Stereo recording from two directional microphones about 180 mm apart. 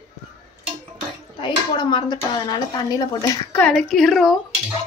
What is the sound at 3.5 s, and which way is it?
Speech, 5° left (ahead or behind).